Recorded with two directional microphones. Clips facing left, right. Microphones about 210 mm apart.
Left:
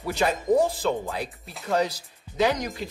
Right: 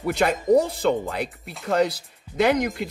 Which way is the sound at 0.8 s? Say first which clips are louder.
Right 4 dB; 60° right (ahead or behind).